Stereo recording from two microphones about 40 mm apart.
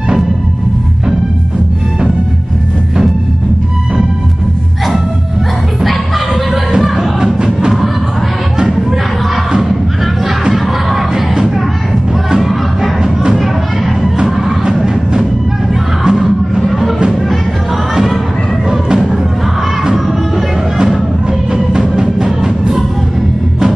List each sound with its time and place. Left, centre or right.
5.9 s a sound: centre
7.2 s music: right
9.5 s a sound: centre
10.5 s crowd: centre
14.2 s music: centre
16.0 s crowd: centre
18.7 s music: centre
22.0 s music: centre